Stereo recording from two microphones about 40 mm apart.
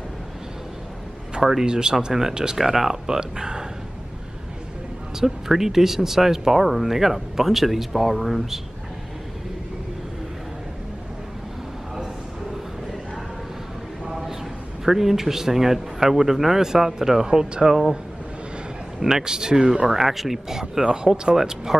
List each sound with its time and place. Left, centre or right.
1.4 s speech: centre
1.7 s speech: centre
5.2 s speech: centre
14.0 s a sound: centre
14.9 s speech: centre
18.9 s speech: centre
20.8 s speech: centre